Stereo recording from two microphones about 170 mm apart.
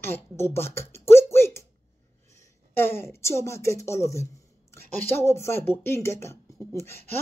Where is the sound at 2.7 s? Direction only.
15° left (ahead or behind).